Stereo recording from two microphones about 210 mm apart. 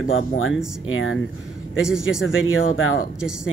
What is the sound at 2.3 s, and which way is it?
Speech, 70° left (ahead or behind).